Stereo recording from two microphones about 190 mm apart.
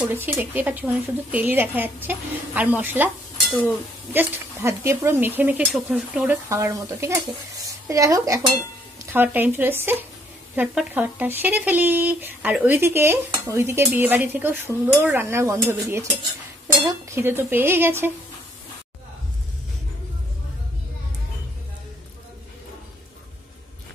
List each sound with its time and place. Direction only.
0.0 s speech: 10° right (ahead or behind)